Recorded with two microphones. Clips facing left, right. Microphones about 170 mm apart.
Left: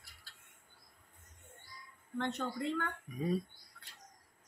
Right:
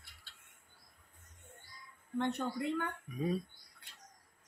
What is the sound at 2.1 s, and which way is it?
Speech, 15° right (ahead or behind).